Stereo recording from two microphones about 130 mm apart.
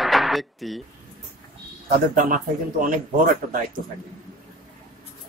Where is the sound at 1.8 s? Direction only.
90° right.